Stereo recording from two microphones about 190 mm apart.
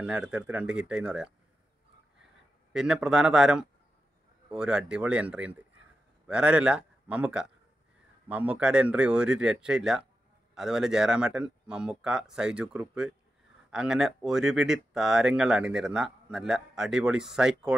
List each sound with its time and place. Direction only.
0.0 s speech: 5° right (ahead or behind)
2.7 s a man's voice: 5° right (ahead or behind)